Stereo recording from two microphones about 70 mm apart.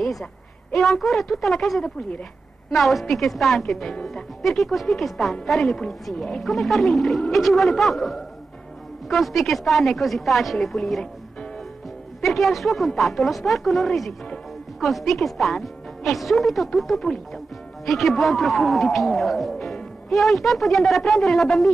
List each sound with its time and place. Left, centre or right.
0.0 s a sound: centre
0.7 s a woman's voice: centre
2.0 s a woman's voice: centre
2.7 s a woman's voice: centre
12.2 s a woman's voice: centre